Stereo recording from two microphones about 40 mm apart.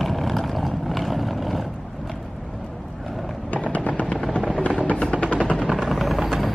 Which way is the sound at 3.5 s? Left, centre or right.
Left.